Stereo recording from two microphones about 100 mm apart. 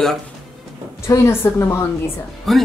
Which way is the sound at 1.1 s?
30° left (ahead or behind).